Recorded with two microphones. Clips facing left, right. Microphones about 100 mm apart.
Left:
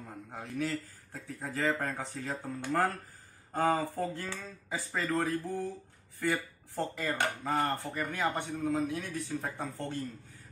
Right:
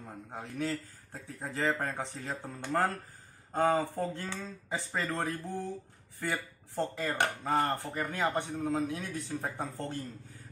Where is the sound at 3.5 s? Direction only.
25° right (ahead or behind).